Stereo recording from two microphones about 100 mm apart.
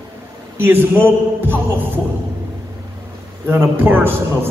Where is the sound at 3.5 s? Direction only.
20° right (ahead or behind).